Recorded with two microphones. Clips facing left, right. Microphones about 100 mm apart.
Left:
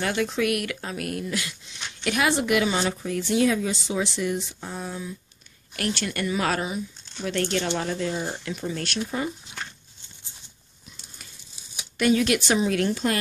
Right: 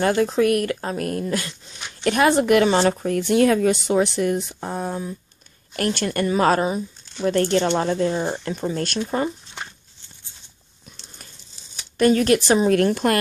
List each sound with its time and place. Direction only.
0.0 s speech: 40° right (ahead or behind)
12.0 s speech: 40° right (ahead or behind)